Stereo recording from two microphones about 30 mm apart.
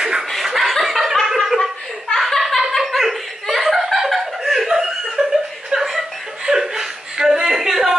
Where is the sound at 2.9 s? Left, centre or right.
Centre.